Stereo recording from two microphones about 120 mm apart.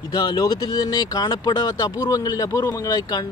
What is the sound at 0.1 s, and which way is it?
Speech, 30° left (ahead or behind).